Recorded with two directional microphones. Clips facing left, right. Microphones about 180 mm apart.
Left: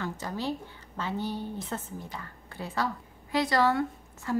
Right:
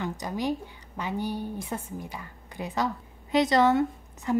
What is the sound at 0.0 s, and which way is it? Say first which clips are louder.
A woman's voice: right 3 dB; 15° right (ahead or behind).